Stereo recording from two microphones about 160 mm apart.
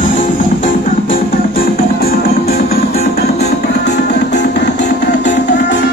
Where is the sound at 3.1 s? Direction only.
85° left.